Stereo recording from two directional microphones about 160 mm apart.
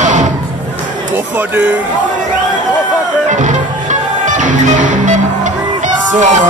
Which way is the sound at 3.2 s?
50° right (ahead or behind).